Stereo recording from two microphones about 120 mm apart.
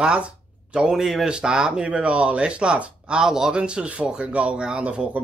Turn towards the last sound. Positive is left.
turn(degrees=-10)  # may be behind; listen again after turning